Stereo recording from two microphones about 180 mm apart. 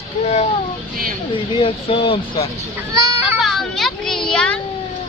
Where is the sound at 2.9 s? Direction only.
20° right (ahead or behind).